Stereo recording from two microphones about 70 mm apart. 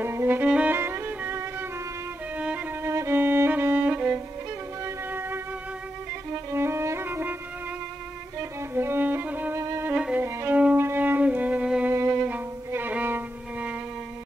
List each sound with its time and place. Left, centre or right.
0.0 s music: right
0.5 s music: centre
0.7 s music: right
2.3 s violin: right
2.8 s violin: right
3.2 s music: right
6.3 s violin: right
7.1 s violin: right
8.4 s violin: right
9.6 s violin: right
10.2 s violin: right
10.5 s violin: right
10.8 s music: right
11.9 s music: right